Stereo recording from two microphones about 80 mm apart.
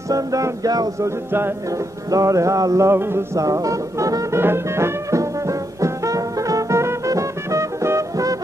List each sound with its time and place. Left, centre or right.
0.1 s music: right
3.3 s music: right
4.4 s music: right